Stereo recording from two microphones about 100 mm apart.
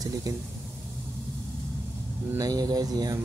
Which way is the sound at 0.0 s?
35° right (ahead or behind).